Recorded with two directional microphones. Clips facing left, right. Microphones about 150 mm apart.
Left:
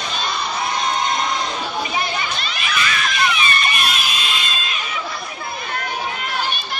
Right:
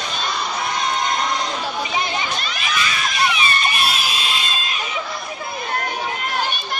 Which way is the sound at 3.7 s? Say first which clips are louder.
Right 1 dB; 30° right (ahead or behind).